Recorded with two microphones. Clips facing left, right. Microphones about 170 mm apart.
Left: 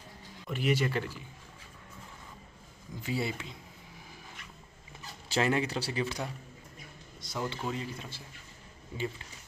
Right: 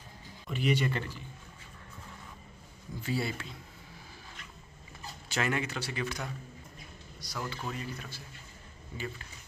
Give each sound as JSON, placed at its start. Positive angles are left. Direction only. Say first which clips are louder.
{"t": 0.5, "sound": "speech", "louder": "even", "side_deg": 5}
{"t": 3.0, "sound": "speech", "louder": "even", "side_deg": 20}
{"t": 5.3, "sound": "a man's voice", "louder": "left 4 dB", "side_deg": 30}